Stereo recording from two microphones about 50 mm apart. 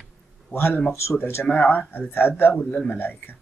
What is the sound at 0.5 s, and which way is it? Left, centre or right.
Speech, left.